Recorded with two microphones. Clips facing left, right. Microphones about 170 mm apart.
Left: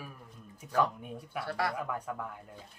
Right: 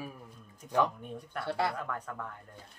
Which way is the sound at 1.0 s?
5° left (ahead or behind).